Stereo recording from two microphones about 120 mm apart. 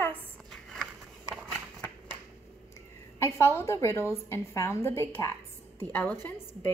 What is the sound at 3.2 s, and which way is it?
A woman's voice, 20° left (ahead or behind).